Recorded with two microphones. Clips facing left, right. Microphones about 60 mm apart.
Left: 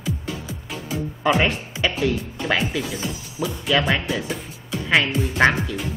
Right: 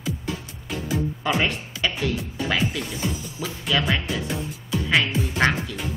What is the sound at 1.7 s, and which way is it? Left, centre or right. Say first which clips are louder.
Music: left 2 dB; left.